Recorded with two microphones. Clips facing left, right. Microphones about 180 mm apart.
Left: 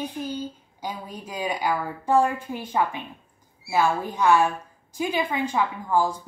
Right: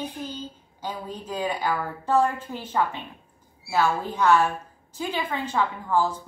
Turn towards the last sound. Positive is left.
turn(degrees=10)  # may be behind; listen again after turning